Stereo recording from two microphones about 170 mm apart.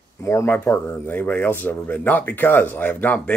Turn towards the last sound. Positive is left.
turn(degrees=10)  # may be behind; listen again after turning